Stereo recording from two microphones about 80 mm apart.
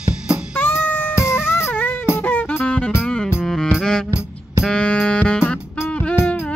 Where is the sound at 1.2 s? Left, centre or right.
Centre.